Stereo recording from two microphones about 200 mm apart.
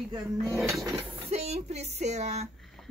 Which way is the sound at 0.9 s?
30° right (ahead or behind).